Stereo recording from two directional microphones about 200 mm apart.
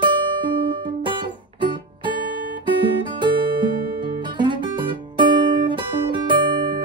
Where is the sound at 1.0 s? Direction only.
25° right (ahead or behind).